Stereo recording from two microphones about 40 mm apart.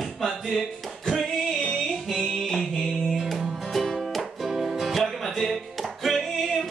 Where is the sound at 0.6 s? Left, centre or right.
Centre.